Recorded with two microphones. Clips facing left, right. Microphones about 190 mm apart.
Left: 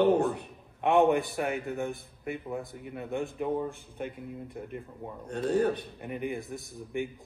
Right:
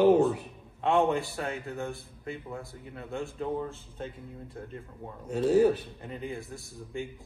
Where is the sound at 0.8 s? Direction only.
20° left (ahead or behind).